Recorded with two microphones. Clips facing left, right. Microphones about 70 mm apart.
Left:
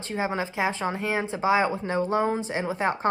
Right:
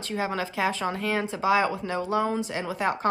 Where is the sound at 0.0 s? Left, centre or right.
Left.